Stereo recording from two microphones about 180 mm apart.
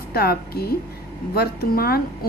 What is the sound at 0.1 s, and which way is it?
A woman's voice, 60° left (ahead or behind).